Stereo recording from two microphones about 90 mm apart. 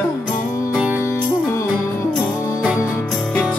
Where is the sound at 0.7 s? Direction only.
10° right (ahead or behind).